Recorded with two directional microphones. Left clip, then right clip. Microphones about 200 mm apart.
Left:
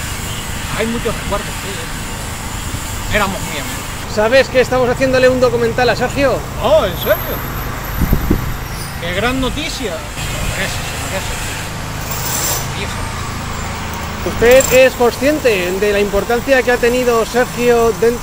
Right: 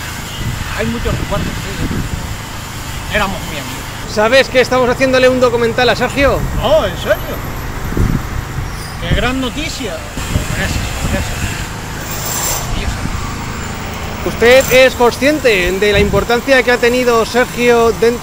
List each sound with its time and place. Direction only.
3.1 s speech: centre (ahead or behind)
4.1 s speech: 25° right (ahead or behind)
6.6 s speech: centre (ahead or behind)
9.0 s speech: centre (ahead or behind)
14.4 s speech: 25° right (ahead or behind)